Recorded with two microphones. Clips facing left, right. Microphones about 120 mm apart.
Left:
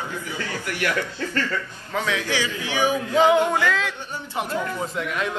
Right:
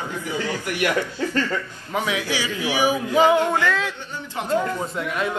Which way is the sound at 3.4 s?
15° left (ahead or behind).